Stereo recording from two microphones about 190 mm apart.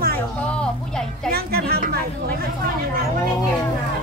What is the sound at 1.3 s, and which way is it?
Music, 55° right (ahead or behind).